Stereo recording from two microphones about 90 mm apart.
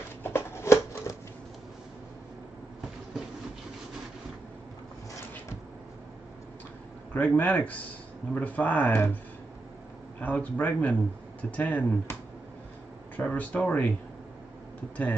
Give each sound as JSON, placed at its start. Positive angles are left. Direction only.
{"t": 0.2, "sound": "shuffling cards", "side_deg": 25}
{"t": 7.2, "sound": "a man's voice", "side_deg": 20}
{"t": 10.2, "sound": "a man's voice", "side_deg": 15}